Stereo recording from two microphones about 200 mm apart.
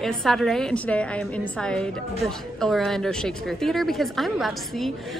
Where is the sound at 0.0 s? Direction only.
Centre (ahead or behind).